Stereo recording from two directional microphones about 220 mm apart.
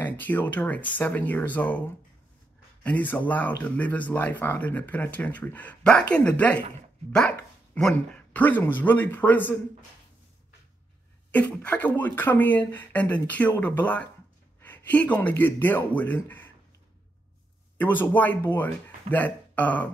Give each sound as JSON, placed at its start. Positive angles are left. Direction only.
{"t": 0.0, "sound": "speech", "side_deg": 5}
{"t": 2.8, "sound": "speech", "side_deg": 5}
{"t": 11.3, "sound": "speech", "side_deg": 5}
{"t": 17.7, "sound": "speech", "side_deg": 10}